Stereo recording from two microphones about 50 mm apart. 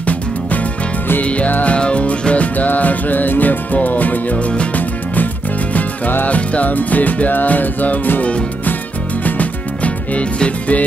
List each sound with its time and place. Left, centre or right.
0.0 s music: left